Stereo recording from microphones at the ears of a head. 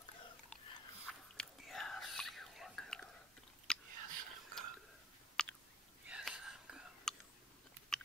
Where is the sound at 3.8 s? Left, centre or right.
Right.